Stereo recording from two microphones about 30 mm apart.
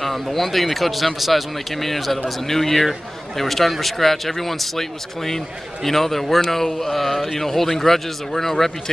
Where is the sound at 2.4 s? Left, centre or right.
Centre.